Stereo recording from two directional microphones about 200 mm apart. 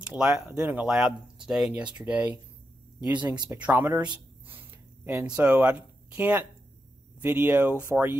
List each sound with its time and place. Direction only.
0.0 s speech: 5° right (ahead or behind)
3.2 s speech: 20° right (ahead or behind)
3.5 s speech: 10° right (ahead or behind)
4.5 s a sound: 10° right (ahead or behind)
7.2 s speech: 10° right (ahead or behind)